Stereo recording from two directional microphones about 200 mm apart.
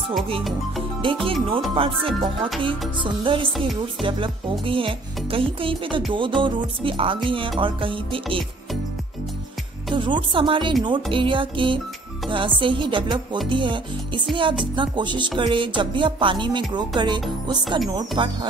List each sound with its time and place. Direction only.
0.4 s music: centre (ahead or behind)
1.2 s music: 25° right (ahead or behind)
9.9 s music: 25° right (ahead or behind)